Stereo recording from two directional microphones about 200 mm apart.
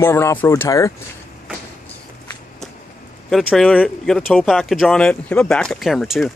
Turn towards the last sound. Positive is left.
turn(degrees=0)  # may be behind; listen again after turning